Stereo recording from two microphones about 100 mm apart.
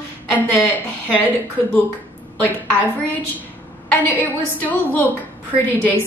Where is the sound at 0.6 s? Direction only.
20° left (ahead or behind).